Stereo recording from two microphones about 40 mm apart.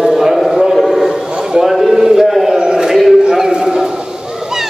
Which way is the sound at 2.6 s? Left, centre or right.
Centre.